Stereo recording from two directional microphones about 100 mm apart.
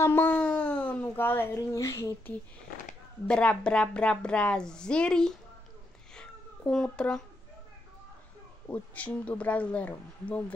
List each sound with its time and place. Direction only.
0.0 s speech: 20° left (ahead or behind)
3.3 s a woman's voice: 10° left (ahead or behind)
6.1 s a sound: 5° left (ahead or behind)
8.6 s a woman's voice: 15° left (ahead or behind)